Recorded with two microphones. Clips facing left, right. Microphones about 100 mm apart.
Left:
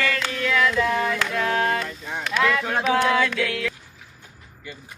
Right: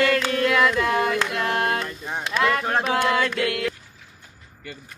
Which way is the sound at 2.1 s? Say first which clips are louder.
Even; 35° right (ahead or behind).